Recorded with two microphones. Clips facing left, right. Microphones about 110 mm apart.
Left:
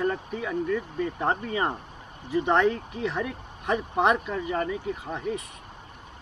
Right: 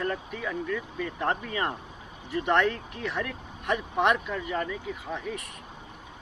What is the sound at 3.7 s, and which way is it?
Speech, 35° left (ahead or behind).